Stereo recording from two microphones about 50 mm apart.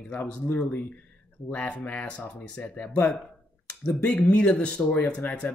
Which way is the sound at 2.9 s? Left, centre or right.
Left.